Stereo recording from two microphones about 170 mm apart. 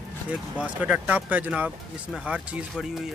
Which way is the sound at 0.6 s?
10° right (ahead or behind).